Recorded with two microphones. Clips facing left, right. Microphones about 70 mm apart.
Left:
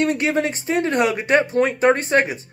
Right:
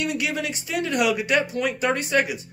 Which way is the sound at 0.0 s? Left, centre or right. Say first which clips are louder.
Left 7 dB; left.